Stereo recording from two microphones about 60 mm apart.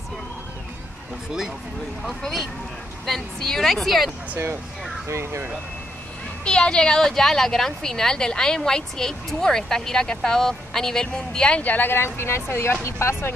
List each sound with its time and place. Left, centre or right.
2.0 s a woman's voice: centre
5.0 s speech: right
6.4 s a woman's voice: centre
11.6 s speech: left